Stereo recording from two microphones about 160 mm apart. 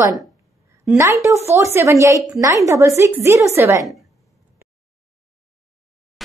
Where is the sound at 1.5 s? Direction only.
20° right (ahead or behind).